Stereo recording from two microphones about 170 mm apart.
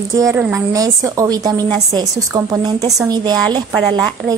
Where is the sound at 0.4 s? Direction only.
10° right (ahead or behind).